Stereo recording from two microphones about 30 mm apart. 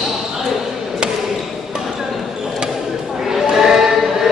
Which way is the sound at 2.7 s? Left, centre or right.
Centre.